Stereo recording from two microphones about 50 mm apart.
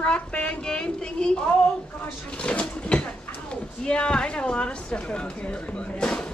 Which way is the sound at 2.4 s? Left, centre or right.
Left.